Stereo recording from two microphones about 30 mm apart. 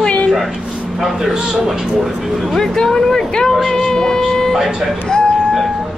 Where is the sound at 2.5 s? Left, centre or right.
Centre.